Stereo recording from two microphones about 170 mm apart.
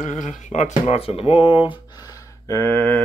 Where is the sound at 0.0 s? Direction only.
45° left (ahead or behind).